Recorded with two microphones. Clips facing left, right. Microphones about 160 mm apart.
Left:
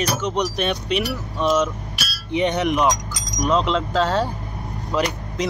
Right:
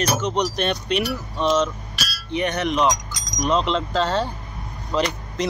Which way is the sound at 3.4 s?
Centre (ahead or behind).